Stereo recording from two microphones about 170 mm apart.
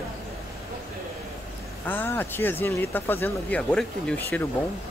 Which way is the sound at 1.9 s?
10° left (ahead or behind).